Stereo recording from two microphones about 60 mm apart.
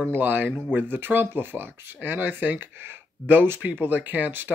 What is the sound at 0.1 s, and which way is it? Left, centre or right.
Speech, right.